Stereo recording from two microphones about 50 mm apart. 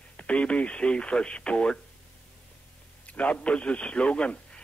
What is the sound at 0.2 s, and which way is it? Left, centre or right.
Speech, left.